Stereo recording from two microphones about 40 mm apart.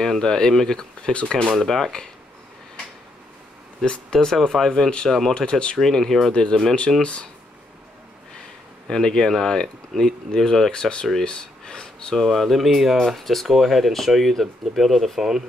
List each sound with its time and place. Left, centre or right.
0.0 s speech: centre
3.8 s speech: left
5.8 s speech: centre
6.3 s speech: left
8.8 s speech: centre
11.2 s a sound: left
12.1 s speech: centre